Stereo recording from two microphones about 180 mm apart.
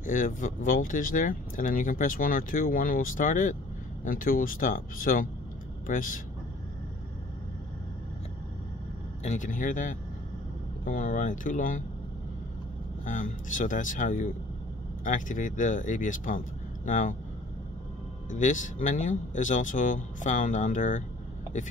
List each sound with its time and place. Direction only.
0.0 s speech: 45° left (ahead or behind)
9.2 s speech: 40° left (ahead or behind)
13.0 s speech: 45° left (ahead or behind)
18.3 s speech: 45° left (ahead or behind)